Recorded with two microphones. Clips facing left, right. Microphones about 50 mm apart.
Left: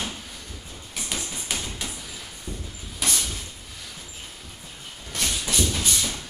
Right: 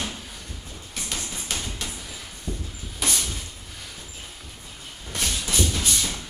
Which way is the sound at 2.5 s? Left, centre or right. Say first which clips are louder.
Right 4 dB; centre.